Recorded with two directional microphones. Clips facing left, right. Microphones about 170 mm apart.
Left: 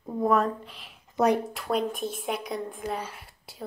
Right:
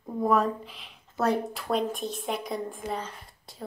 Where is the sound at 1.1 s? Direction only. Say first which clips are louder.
Left 3 dB; 15° left (ahead or behind).